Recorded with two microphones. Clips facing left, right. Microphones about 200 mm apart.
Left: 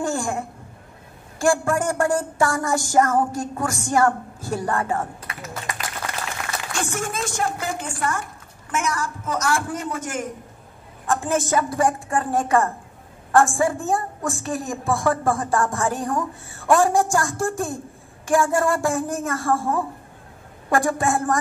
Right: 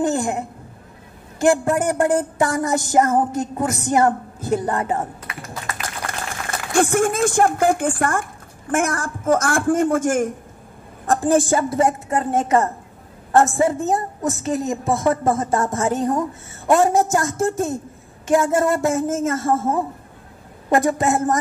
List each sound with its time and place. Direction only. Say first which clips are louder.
0.0 s a woman's voice: right 4 dB; 20° right (ahead or behind)
6.0 s a sound: right 1 dB; 5° left (ahead or behind)
6.7 s speech: right 12 dB; 55° right (ahead or behind)
11.1 s a woman's voice: right 5 dB; 35° right (ahead or behind)